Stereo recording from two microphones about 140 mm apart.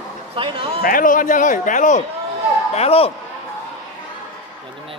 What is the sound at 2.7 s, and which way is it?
Speech, 45° left (ahead or behind).